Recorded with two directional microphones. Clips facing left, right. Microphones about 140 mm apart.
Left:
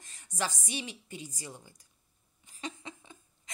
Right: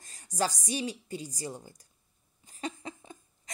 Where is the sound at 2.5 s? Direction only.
40° right (ahead or behind).